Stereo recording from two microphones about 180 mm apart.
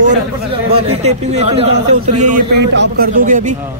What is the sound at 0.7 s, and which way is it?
Speech, 35° right (ahead or behind).